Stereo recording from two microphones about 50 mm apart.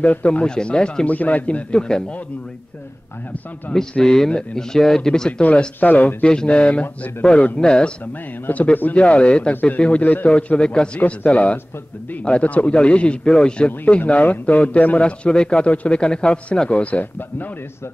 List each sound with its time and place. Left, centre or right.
0.0 s speech: left
1.0 s speech: left; by 2.1 s centre
3.7 s speech: left
4.0 s speech: centre
5.8 s speech: left
6.2 s speech: left
7.5 s speech: centre
8.5 s speech: left
8.9 s speech: left